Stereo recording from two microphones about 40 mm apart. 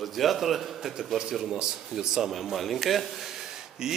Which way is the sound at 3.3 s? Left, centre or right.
Centre.